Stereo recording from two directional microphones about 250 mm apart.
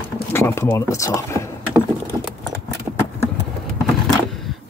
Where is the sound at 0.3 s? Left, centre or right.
Centre.